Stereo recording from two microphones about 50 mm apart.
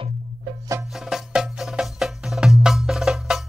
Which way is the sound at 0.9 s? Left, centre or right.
Centre.